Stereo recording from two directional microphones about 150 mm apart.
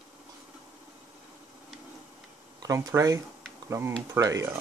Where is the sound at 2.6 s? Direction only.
25° right (ahead or behind).